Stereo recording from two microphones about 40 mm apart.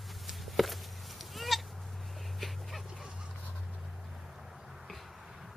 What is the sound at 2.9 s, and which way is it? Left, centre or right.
Vehicle, centre.